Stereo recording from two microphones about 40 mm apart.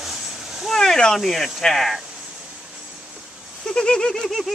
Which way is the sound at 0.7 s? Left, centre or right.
Centre.